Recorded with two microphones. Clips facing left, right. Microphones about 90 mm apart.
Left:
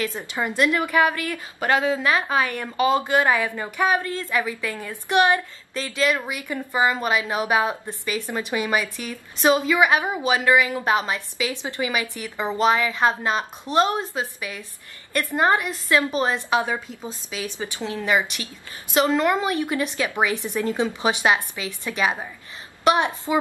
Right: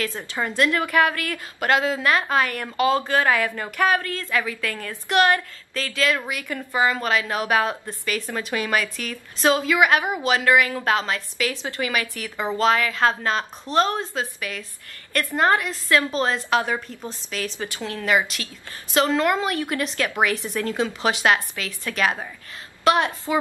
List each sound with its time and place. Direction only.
0.2 s a woman's voice: 10° left (ahead or behind)